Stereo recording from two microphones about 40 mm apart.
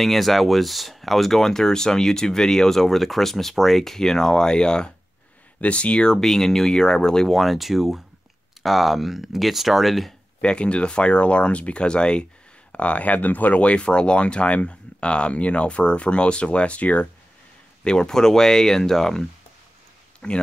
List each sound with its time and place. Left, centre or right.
0.0 s speech: centre; by 4.9 s left
5.6 s speech: left; by 7.3 s centre
7.3 s speech: centre
10.4 s speech: left
12.7 s speech: left
17.8 s speech: centre
20.2 s speech: left